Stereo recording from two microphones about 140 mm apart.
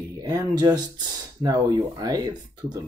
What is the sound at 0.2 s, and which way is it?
Speech, 25° right (ahead or behind).